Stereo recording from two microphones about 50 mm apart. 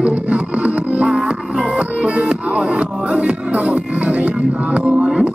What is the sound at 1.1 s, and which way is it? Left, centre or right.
Music, centre.